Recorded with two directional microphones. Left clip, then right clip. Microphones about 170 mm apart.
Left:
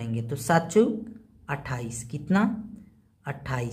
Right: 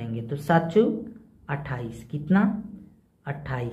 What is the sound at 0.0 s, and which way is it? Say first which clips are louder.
A woman's voice: even; 20° left (ahead or behind).